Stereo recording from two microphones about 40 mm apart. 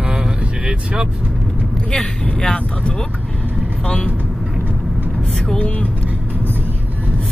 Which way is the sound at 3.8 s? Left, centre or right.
Left.